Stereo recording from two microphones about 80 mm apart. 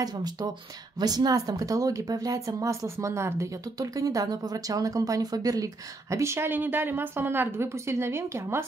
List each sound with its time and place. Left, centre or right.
0.0 s speech: right
3.7 s speech: right